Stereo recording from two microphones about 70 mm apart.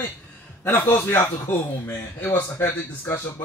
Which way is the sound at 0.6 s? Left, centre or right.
Left.